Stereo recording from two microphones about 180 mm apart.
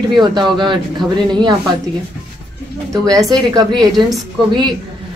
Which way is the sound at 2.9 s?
20° right (ahead or behind).